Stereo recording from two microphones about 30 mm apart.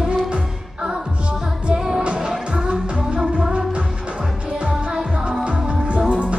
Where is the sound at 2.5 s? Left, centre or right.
Right.